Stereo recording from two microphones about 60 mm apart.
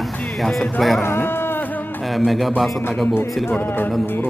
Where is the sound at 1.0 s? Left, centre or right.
Left.